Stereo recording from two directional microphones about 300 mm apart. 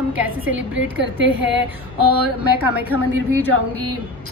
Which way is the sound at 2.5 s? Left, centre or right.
Centre.